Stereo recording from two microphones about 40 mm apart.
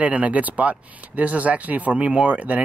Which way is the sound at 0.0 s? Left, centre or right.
Right.